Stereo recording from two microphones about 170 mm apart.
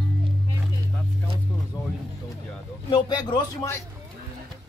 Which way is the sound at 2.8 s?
25° left (ahead or behind).